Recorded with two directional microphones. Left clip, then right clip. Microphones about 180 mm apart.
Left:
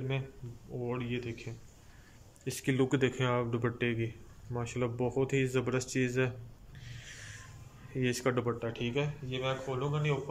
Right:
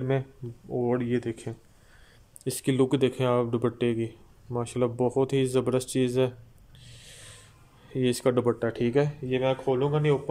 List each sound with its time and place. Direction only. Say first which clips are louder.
0.8 s speech: right 9 dB; 45° right (ahead or behind)
2.4 s speech: right 6 dB; 25° right (ahead or behind)
6.8 s snort: even; 20° right (ahead or behind)
7.9 s speech: right 7 dB; 25° right (ahead or behind)
8.5 s speech: right 9 dB; 45° right (ahead or behind)